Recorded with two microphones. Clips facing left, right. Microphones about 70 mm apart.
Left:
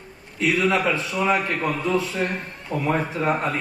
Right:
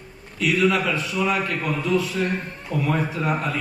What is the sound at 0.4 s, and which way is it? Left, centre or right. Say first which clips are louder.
A man's voice: even; left.